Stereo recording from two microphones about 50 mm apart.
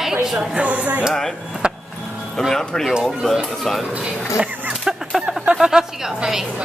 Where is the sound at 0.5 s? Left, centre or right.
Right.